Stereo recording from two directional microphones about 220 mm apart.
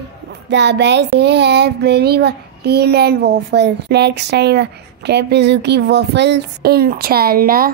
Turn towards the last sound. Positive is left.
turn(degrees=-40)  # may be behind; listen again after turning